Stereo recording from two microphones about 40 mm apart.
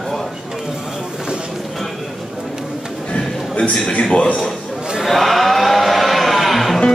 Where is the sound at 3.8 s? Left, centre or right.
Left.